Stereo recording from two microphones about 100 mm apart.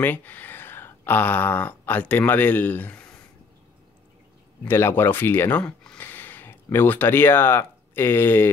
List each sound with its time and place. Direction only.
0.0 s speech: 20° left (ahead or behind)
4.6 s speech: 25° left (ahead or behind)